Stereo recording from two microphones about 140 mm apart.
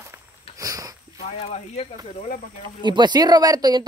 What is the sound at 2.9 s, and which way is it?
Speech, 30° right (ahead or behind).